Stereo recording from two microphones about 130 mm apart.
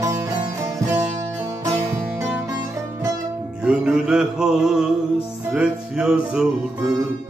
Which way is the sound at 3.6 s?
5° right (ahead or behind).